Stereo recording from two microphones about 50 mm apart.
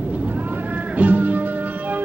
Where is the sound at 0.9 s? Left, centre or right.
Right.